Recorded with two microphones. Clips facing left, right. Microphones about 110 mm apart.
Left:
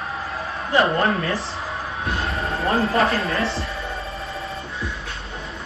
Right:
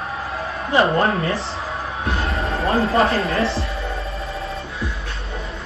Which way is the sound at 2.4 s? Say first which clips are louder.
Right 1 dB; 30° right (ahead or behind).